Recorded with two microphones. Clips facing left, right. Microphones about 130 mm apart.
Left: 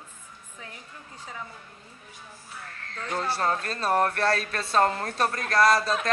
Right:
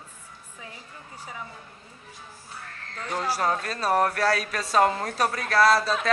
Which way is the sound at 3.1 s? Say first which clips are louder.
Right 1 dB; 5° right (ahead or behind).